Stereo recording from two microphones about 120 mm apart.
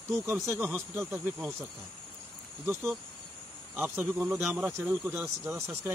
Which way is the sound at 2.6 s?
20° right (ahead or behind).